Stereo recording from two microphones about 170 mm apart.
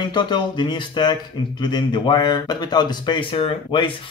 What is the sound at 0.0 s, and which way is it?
Speech, 25° left (ahead or behind).